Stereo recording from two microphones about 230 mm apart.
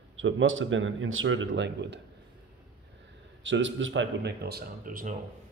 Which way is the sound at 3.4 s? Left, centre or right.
Right.